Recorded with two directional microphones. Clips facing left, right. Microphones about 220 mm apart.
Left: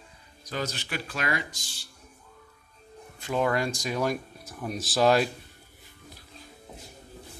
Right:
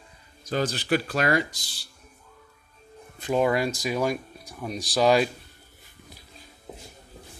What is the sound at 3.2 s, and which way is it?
Speech, 15° right (ahead or behind).